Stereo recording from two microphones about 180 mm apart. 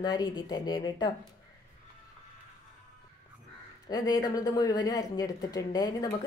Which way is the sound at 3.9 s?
20° left (ahead or behind).